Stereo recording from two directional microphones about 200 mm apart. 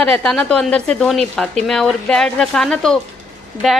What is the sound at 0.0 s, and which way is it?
A woman's voice, 5° left (ahead or behind).